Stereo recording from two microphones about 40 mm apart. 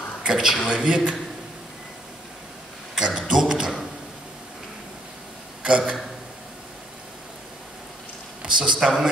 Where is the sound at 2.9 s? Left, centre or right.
Centre.